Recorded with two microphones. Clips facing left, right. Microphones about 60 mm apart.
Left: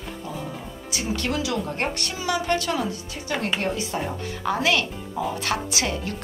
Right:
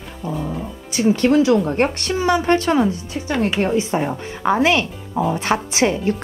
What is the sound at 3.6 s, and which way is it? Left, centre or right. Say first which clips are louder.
Speech: right 8 dB; right.